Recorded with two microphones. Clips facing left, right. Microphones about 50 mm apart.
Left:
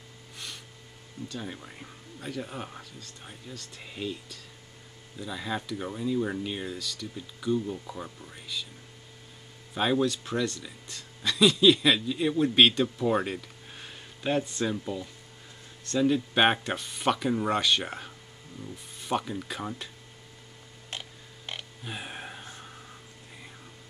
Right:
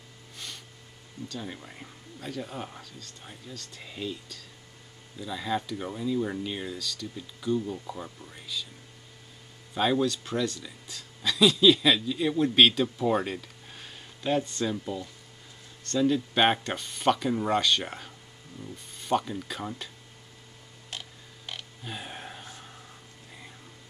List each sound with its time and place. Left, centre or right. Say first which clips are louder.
1.3 s speech: even; centre
2.1 s speech: even; centre
9.8 s speech: even; centre
20.9 s creak: left 1 dB; left